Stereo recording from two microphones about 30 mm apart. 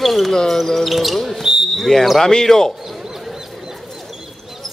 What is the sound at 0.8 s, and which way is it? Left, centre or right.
Speech, centre.